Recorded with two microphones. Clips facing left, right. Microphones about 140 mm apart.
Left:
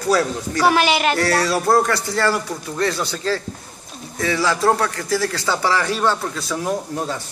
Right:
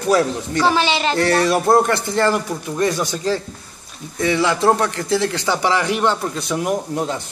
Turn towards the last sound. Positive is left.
turn(degrees=-20)  # may be behind; listen again after turning